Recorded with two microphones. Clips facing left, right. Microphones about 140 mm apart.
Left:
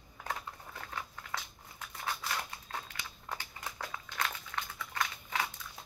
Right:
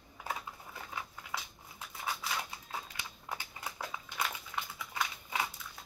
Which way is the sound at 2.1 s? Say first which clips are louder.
Even; 5° right (ahead or behind).